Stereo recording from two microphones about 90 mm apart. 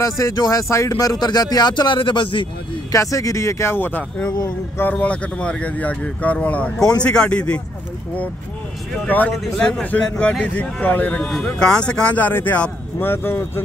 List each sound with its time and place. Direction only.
0.0 s speech: 40° left (ahead or behind); by 2.4 s 70° left (ahead or behind)
2.9 s speech: 35° left (ahead or behind); by 7.6 s 10° left (ahead or behind)
9.0 s speech: 15° left (ahead or behind)